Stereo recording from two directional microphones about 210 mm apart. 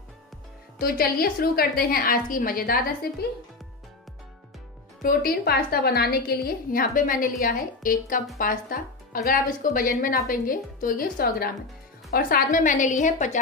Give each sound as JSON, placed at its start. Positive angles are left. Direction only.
{"t": 0.7, "sound": "a woman's voice", "side_deg": 45}
{"t": 5.0, "sound": "a woman's voice", "side_deg": 45}